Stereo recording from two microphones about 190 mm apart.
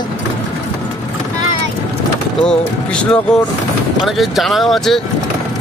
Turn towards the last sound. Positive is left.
turn(degrees=0)  # may be behind; listen again after turning